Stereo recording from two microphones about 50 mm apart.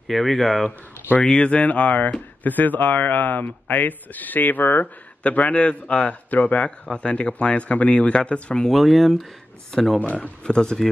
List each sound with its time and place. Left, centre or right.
0.1 s speech: centre
1.2 s a man's voice: left
5.2 s a man's voice: left
8.6 s speech: centre
9.9 s a man's voice: left
10.4 s speech: centre